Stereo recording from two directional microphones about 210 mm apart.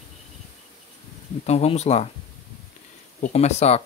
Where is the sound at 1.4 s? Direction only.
30° left (ahead or behind).